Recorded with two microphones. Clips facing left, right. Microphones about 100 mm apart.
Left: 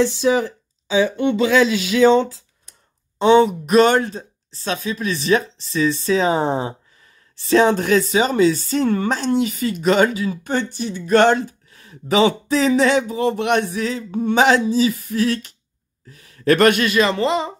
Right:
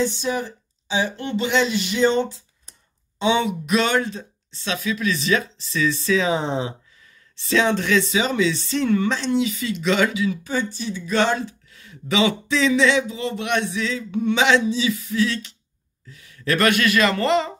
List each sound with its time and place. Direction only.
0.0 s speech: 90° left
2.0 s speech: 90° left
3.2 s speech: 40° left (ahead or behind)
10.4 s speech: 60° left (ahead or behind)
16.7 s speech: 25° left (ahead or behind)